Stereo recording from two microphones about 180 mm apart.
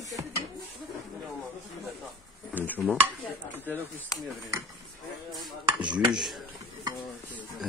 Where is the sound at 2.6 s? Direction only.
10° left (ahead or behind).